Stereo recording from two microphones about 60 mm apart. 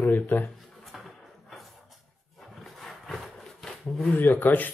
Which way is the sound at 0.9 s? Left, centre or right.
Centre.